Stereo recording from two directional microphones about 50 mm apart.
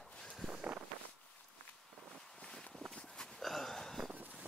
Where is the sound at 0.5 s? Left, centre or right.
Right.